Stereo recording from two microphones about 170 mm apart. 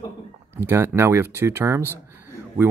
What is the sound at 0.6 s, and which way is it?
Speech, 15° right (ahead or behind).